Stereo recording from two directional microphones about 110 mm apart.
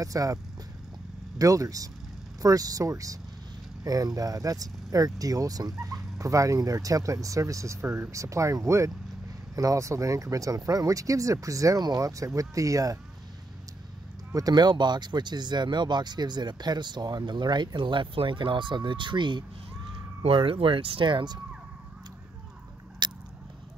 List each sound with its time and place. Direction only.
0.0 s speech: 30° right (ahead or behind)
1.4 s speech: 30° right (ahead or behind)
14.3 s speech: 35° right (ahead or behind)
23.0 s biting: 45° right (ahead or behind)